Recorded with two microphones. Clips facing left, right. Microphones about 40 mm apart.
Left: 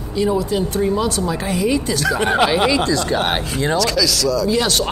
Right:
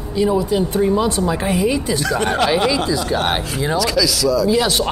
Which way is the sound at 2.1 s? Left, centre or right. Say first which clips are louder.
Left 2 dB; centre.